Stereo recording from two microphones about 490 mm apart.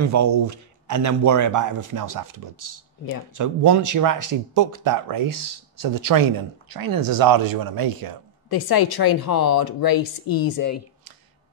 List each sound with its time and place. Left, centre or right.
0.0 s speech: right
8.5 s speech: left